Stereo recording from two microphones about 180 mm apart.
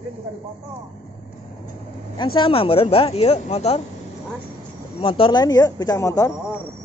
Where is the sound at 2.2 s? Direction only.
30° left (ahead or behind).